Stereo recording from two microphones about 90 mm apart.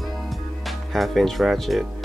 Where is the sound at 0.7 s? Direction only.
Centre (ahead or behind).